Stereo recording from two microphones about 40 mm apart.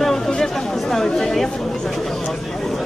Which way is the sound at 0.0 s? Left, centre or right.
Centre.